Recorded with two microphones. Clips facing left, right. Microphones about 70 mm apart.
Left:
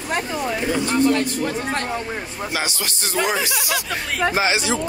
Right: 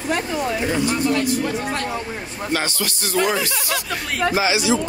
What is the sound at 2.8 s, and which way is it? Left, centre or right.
Speech, left.